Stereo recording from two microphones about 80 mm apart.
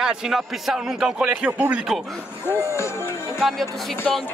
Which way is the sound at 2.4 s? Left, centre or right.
Left.